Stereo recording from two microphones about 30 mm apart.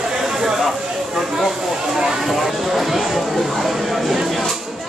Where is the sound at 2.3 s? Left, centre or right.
Centre.